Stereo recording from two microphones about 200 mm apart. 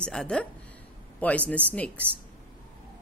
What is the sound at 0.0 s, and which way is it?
Speech, 5° left (ahead or behind).